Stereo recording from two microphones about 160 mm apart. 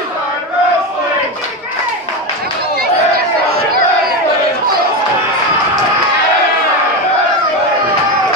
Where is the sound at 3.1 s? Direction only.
70° right (ahead or behind).